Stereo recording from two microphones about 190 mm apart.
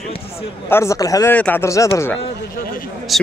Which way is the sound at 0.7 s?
15° left (ahead or behind).